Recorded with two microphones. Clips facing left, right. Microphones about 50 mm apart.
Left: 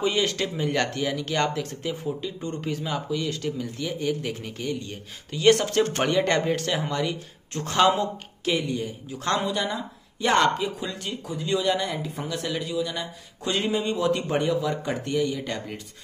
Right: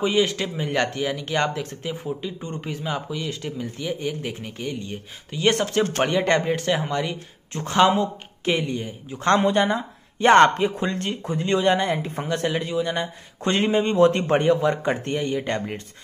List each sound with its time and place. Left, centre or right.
0.0 s a man's voice: centre
9.3 s speech: right